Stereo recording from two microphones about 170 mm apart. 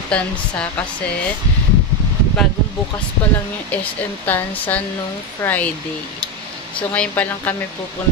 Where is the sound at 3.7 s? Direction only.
10° left (ahead or behind).